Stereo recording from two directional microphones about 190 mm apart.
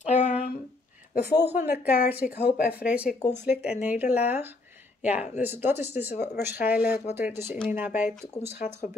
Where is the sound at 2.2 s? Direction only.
50° left (ahead or behind).